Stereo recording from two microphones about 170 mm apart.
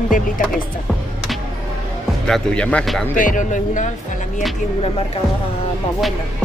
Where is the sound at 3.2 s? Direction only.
50° left (ahead or behind).